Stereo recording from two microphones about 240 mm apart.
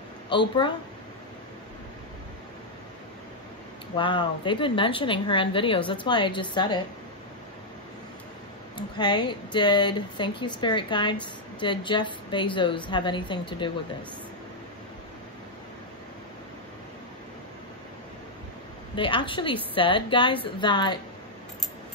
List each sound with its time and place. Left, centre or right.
0.3 s speech: centre
3.9 s speech: centre
8.7 s speech: centre
18.9 s speech: left